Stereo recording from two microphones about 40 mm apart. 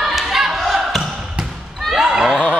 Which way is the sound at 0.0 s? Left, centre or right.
Centre.